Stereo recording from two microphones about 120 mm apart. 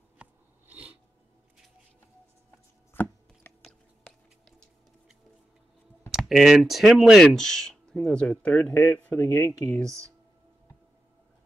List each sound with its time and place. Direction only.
0.2 s biting: 10° right (ahead or behind)
2.9 s chopping: 15° left (ahead or behind)
3.6 s music: 5° left (ahead or behind)
6.1 s speech: centre (ahead or behind); by 9.5 s 20° left (ahead or behind)